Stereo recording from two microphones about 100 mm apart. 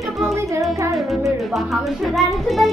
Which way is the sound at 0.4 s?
30° right (ahead or behind).